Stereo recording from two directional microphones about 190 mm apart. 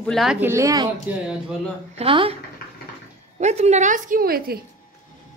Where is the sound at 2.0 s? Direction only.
30° right (ahead or behind).